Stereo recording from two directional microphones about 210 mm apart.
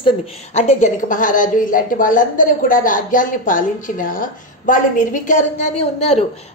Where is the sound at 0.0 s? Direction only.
30° left (ahead or behind).